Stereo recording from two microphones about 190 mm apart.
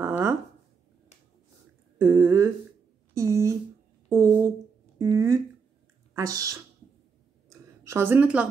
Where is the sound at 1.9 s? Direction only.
15° right (ahead or behind).